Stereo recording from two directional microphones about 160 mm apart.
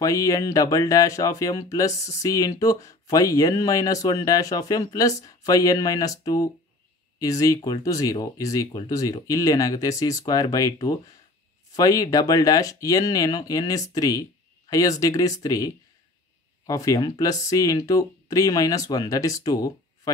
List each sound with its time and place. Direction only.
0.0 s speech: 20° left (ahead or behind)